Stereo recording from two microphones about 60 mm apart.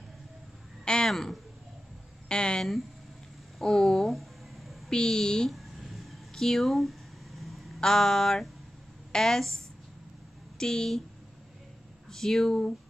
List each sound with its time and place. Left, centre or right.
0.8 s speech: centre
3.5 s a sound: centre
4.9 s speech: centre
5.5 s a sound: centre
9.1 s speech: centre
10.6 s speech: centre
12.1 s speech: centre